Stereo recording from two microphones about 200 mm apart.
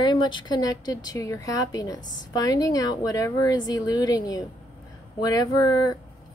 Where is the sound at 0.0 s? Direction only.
20° left (ahead or behind).